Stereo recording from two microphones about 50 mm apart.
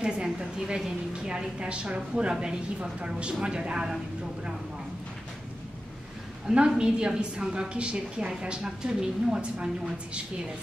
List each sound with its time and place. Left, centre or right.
0.0 s a woman's voice: centre
6.4 s a woman's voice: centre